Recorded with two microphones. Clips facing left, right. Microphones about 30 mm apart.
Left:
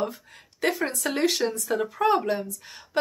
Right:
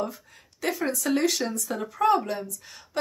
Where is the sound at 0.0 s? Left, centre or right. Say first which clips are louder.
Left 2 dB; left.